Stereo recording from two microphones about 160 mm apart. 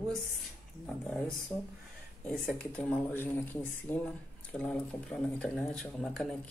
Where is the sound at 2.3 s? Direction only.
5° left (ahead or behind).